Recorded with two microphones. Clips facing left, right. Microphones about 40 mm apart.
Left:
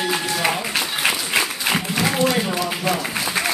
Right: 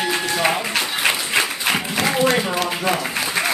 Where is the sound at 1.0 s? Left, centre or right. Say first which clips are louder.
Right 1 dB; centre.